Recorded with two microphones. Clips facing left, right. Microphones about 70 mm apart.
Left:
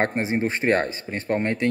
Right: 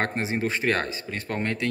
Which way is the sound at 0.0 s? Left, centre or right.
Left.